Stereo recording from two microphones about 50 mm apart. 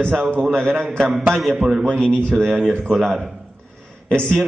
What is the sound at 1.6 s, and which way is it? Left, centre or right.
Speech, centre.